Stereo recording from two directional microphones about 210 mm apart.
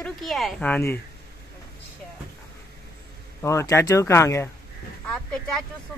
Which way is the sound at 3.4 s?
15° left (ahead or behind).